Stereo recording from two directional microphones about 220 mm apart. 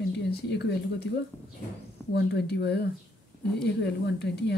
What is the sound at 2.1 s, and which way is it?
Speech, 50° left (ahead or behind).